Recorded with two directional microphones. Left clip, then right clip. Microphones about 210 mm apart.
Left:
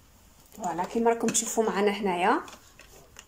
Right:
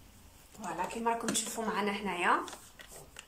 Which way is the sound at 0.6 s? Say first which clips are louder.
Left 8 dB; 30° left (ahead or behind).